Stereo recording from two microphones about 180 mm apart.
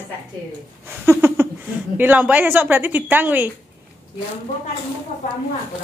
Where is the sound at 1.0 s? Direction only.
15° right (ahead or behind).